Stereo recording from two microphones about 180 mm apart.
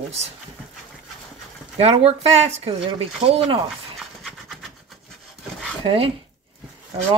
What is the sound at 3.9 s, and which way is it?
Pant, centre (ahead or behind).